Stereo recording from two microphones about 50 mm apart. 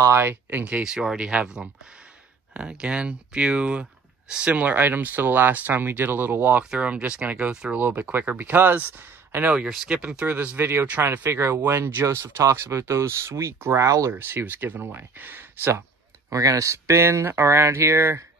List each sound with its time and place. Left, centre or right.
0.1 s speech: right
0.5 s speech: right
0.8 s speech: centre
4.6 s speech: right
6.8 s speech: right
7.7 s speech: right
10.6 s speech: right
14.1 s speech: right
16.3 s speech: right